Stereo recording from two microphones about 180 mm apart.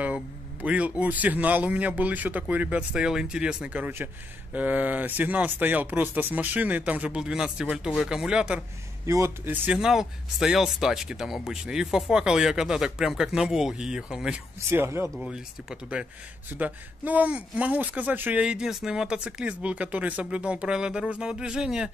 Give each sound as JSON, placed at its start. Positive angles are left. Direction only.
{"t": 0.0, "sound": "speech", "side_deg": -5}
{"t": 15.1, "sound": "speech", "side_deg": -5}